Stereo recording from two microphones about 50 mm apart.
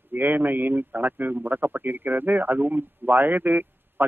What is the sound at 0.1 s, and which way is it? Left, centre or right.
A man's voice, right.